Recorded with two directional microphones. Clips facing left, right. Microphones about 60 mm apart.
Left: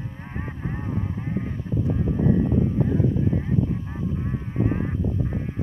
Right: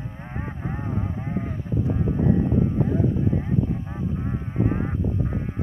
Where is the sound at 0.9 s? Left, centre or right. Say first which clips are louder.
Even; centre.